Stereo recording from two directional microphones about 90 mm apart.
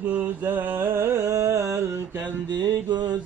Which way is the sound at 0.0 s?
20° right (ahead or behind).